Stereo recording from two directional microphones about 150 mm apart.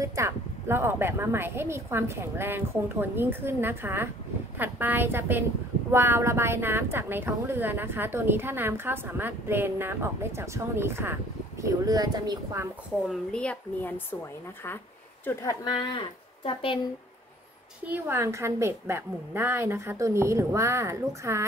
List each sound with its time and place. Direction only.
0.0 s a woman's voice: 20° right (ahead or behind)
13.1 s speech: 5° left (ahead or behind)
15.6 s speech: 30° left (ahead or behind)
17.8 s a woman's voice: 15° right (ahead or behind)